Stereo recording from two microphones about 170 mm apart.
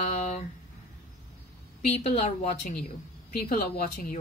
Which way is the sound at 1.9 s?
35° left (ahead or behind).